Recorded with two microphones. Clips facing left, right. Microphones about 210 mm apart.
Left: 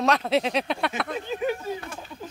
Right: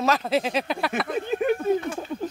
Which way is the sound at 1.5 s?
55° right (ahead or behind).